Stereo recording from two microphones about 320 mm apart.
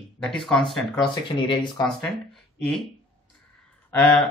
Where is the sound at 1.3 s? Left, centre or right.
Centre.